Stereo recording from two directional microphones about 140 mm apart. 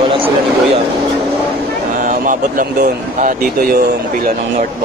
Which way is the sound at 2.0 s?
65° right (ahead or behind).